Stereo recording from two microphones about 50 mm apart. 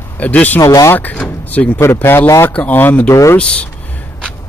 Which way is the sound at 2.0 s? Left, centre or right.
Left.